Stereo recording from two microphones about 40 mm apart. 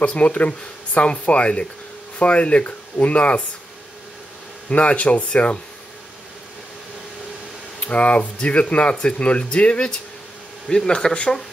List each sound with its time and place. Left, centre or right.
0.0 s speech: left
4.6 s speech: left
7.8 s speech: left
10.7 s speech: centre